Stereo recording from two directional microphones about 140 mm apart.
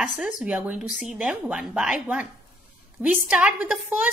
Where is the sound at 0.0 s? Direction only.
5° right (ahead or behind).